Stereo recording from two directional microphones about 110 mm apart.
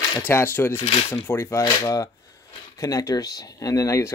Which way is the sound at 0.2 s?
20° left (ahead or behind).